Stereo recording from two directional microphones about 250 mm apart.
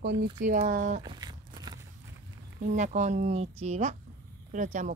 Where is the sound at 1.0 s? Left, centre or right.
Centre.